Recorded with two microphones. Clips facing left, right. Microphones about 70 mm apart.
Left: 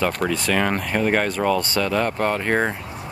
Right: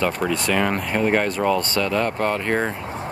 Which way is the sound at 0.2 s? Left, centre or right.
Centre.